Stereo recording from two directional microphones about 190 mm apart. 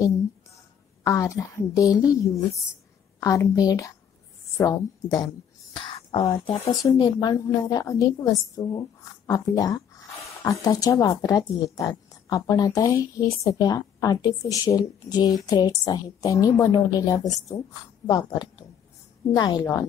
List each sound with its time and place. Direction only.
1.0 s a woman's voice: 15° left (ahead or behind)